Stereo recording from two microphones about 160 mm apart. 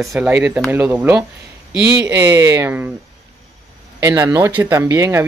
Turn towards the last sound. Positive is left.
turn(degrees=-15)  # may be behind; listen again after turning